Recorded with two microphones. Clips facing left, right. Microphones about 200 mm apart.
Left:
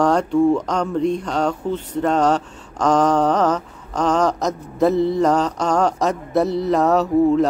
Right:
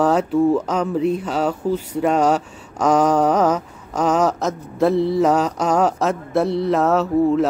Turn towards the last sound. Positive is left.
turn(degrees=0)  # may be behind; listen again after turning